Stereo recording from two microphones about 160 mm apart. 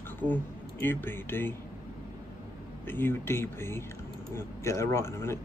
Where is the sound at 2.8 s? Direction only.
15° left (ahead or behind).